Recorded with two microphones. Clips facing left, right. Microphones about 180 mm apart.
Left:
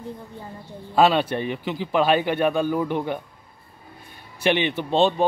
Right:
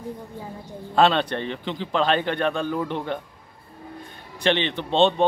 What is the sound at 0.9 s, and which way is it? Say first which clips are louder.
A man's voice: left 1 dB; 5° left (ahead or behind).